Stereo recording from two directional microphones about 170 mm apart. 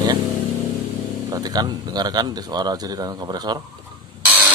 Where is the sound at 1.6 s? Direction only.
25° right (ahead or behind).